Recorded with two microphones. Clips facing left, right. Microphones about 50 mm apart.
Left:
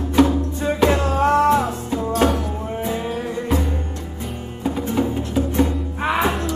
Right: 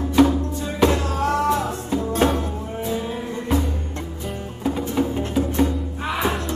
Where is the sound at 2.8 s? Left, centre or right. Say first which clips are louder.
Even; left.